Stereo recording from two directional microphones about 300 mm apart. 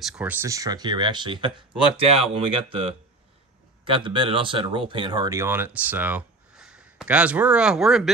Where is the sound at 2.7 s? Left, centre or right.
Centre.